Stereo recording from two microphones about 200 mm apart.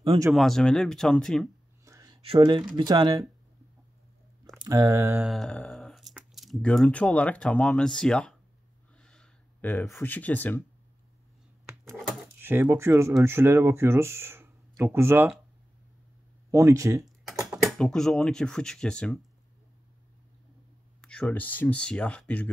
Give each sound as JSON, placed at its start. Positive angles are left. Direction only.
{"t": 0.3, "sound": "speech", "side_deg": 0}
{"t": 1.9, "sound": "a sound", "side_deg": -20}
{"t": 2.7, "sound": "speech", "side_deg": -20}
{"t": 4.6, "sound": "speech", "side_deg": -15}
{"t": 5.3, "sound": "speech", "side_deg": 5}
{"t": 8.9, "sound": "a sound", "side_deg": 5}
{"t": 11.6, "sound": "a sound", "side_deg": -15}
{"t": 12.4, "sound": "speech", "side_deg": -10}
{"t": 16.4, "sound": "speech", "side_deg": -15}
{"t": 17.0, "sound": "speech", "side_deg": 0}
{"t": 21.0, "sound": "speech", "side_deg": 5}